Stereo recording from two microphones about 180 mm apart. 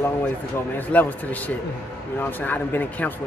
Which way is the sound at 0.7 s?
10° left (ahead or behind).